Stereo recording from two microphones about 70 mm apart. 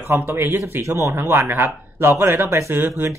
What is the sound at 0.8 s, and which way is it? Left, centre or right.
Speech, right.